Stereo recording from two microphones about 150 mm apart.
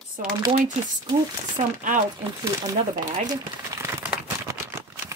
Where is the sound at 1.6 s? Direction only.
35° right (ahead or behind).